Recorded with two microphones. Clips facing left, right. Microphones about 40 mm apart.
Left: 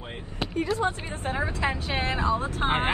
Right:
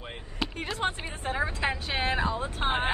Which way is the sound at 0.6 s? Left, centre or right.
Right.